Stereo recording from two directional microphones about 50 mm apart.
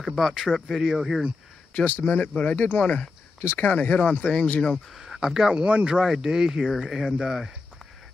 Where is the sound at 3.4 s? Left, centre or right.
Left.